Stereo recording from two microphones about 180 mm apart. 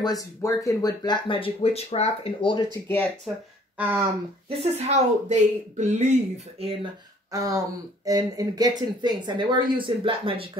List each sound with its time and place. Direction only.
0.0 s speech: 20° left (ahead or behind)
3.7 s speech: 10° right (ahead or behind)
4.5 s speech: 35° right (ahead or behind)
7.3 s speech: 20° right (ahead or behind)